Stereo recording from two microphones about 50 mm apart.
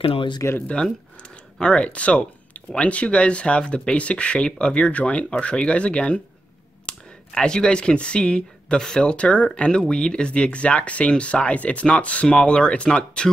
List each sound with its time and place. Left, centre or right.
0.7 s speech: centre
6.9 s clicking: left
7.3 s speech: centre